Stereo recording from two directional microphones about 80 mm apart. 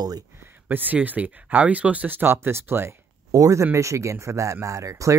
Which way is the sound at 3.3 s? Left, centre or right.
Right.